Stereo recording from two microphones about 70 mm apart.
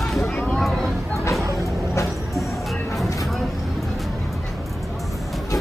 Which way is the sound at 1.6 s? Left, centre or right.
Left.